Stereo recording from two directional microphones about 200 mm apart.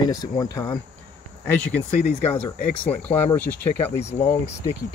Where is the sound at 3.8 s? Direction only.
30° left (ahead or behind).